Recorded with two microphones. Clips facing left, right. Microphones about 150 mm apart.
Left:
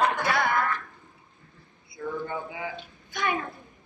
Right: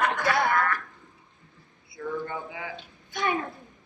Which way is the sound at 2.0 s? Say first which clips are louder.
Even; 5° left (ahead or behind).